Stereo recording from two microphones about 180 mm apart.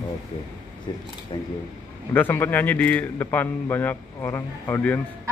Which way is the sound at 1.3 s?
25° left (ahead or behind).